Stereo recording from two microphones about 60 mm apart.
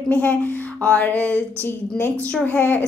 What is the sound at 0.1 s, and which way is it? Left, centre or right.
Speech, left.